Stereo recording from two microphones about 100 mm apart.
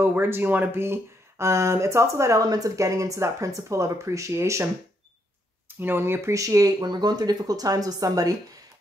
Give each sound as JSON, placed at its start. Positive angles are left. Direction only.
{"t": 0.0, "sound": "speech", "side_deg": -20}
{"t": 5.8, "sound": "speech", "side_deg": -20}